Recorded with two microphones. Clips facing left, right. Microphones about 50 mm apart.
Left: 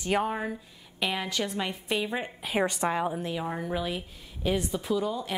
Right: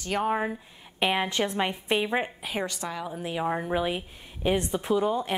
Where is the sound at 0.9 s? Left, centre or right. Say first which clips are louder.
Right 4 dB; right.